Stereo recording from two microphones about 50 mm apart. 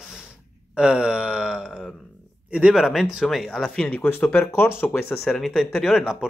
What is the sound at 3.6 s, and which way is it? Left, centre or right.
Speech, centre.